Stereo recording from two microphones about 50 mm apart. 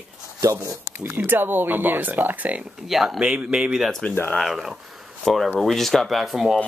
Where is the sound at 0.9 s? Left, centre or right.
Right.